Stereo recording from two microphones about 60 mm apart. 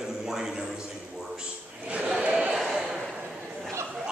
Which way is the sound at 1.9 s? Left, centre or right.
Right.